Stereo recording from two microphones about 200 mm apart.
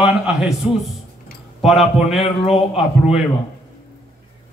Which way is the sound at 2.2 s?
30° left (ahead or behind).